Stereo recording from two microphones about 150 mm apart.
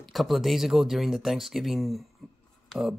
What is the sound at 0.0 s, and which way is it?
Speech, centre (ahead or behind).